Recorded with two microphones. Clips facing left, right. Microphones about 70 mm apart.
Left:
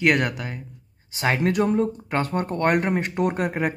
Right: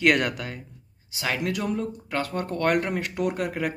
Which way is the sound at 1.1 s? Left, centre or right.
Left.